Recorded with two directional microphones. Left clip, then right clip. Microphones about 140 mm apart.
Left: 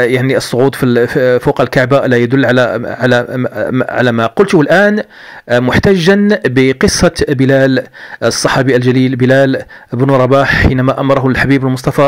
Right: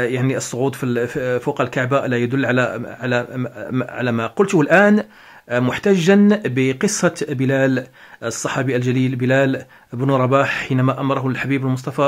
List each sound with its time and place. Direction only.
0.3 s speech: 30° left (ahead or behind)
9.9 s a man's voice: 25° left (ahead or behind)
10.2 s speech: 35° left (ahead or behind)